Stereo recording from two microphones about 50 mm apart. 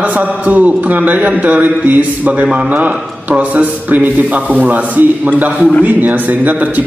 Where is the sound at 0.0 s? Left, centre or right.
Right.